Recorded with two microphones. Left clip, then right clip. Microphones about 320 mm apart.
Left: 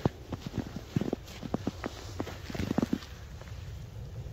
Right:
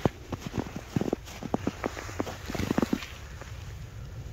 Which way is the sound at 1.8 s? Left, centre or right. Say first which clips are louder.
Right 5 dB; centre.